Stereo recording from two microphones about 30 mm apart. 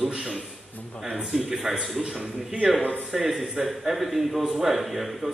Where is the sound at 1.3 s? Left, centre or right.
Centre.